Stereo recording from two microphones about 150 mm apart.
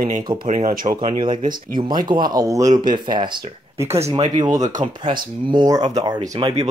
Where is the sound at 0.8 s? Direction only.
30° right (ahead or behind).